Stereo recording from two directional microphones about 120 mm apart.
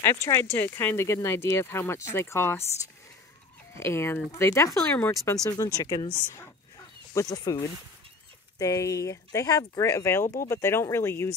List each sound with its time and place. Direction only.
0.0 s speech: 20° left (ahead or behind)
3.7 s speech: 20° left (ahead or behind)
7.2 s speech: 30° left (ahead or behind)
8.5 s speech: 25° left (ahead or behind)